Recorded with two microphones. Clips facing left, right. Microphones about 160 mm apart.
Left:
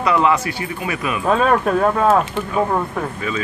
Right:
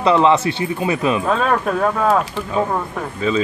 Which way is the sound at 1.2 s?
5° left (ahead or behind).